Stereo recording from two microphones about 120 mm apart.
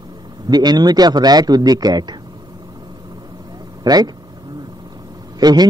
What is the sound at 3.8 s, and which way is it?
Speech, 35° right (ahead or behind).